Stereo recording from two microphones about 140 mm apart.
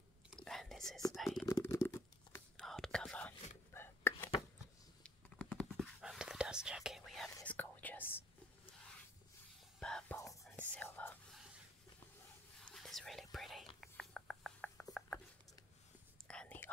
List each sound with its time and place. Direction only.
0.3 s whispering: centre (ahead or behind)
1.4 s a sound: 20° left (ahead or behind)
2.5 s whispering: 5° left (ahead or behind)
5.0 s whispering: 5° left (ahead or behind)
7.4 s whispering: 10° left (ahead or behind)
9.8 s whispering: 5° left (ahead or behind)
12.6 s whispering: centre (ahead or behind)
13.7 s a sound: 5° left (ahead or behind)
16.3 s whispering: 10° left (ahead or behind)